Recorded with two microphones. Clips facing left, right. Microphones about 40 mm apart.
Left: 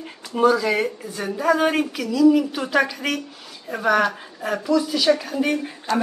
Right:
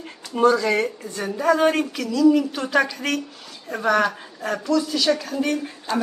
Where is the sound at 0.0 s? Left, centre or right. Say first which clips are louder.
Even; centre.